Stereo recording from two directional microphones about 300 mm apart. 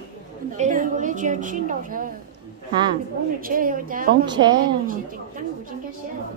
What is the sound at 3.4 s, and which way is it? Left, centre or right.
Speech, right.